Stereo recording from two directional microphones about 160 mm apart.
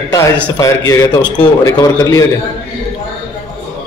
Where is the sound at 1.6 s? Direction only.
20° left (ahead or behind).